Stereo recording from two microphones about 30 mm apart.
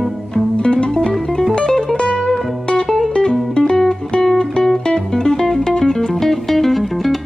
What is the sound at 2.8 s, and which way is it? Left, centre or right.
Music, centre.